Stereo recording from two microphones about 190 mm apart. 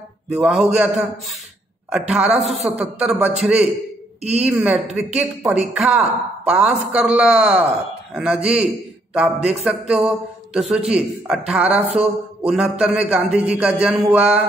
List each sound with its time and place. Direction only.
0.3 s speech: 5° right (ahead or behind)
1.9 s speech: 5° right (ahead or behind)
2.3 s a man's voice: 35° right (ahead or behind)
2.6 s speech: 5° right (ahead or behind)